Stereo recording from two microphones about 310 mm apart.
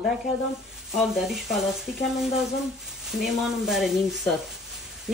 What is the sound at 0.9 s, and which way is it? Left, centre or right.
Speech, centre.